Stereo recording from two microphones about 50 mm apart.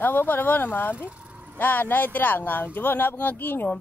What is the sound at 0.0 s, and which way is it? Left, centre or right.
Speech, left.